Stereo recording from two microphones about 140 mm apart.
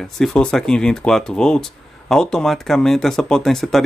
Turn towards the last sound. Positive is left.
turn(degrees=0)  # may be behind; listen again after turning